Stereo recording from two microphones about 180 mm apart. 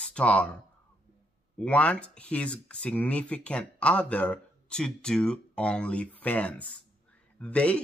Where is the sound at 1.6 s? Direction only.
5° left (ahead or behind).